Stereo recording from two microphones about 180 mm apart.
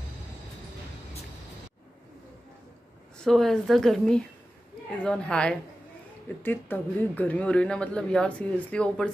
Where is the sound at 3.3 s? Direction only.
Centre (ahead or behind).